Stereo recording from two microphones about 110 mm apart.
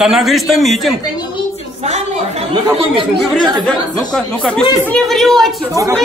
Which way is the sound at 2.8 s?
45° right (ahead or behind).